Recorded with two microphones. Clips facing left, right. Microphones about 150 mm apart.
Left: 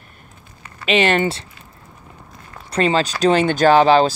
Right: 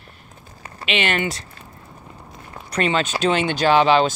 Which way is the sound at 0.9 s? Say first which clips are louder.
Left 6 dB; 35° left (ahead or behind).